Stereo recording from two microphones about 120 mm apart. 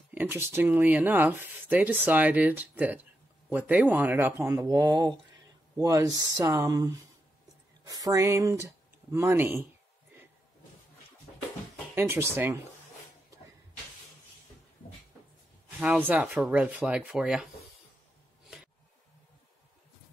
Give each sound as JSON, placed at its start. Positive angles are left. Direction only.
{"t": 0.1, "sound": "speech", "side_deg": -15}
{"t": 4.7, "sound": "speech", "side_deg": -40}
{"t": 11.9, "sound": "speech", "side_deg": -20}
{"t": 15.8, "sound": "speech", "side_deg": -10}